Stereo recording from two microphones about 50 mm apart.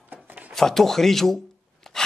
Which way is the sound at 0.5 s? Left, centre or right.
Centre.